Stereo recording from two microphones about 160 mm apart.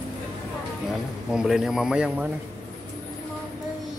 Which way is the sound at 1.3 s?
5° right (ahead or behind).